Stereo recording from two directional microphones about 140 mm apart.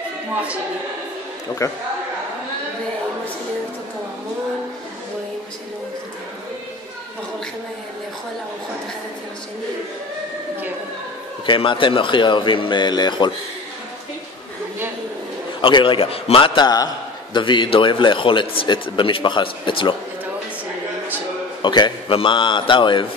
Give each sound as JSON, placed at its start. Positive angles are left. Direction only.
{"t": 1.6, "sound": "a man's voice", "side_deg": 20}
{"t": 11.4, "sound": "a man's voice", "side_deg": 35}
{"t": 15.6, "sound": "a man's voice", "side_deg": 35}
{"t": 21.6, "sound": "a man's voice", "side_deg": 35}